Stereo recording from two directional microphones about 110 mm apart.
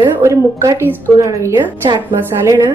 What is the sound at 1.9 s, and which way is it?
Speech, 40° right (ahead or behind).